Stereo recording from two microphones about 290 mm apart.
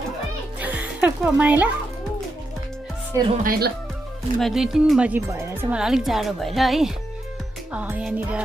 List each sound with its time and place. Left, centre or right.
0.6 s music: centre
3.4 s speech: right
4.4 s a woman's voice: centre